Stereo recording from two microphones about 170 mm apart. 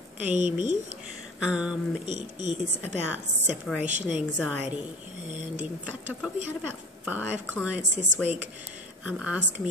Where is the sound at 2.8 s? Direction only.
10° right (ahead or behind).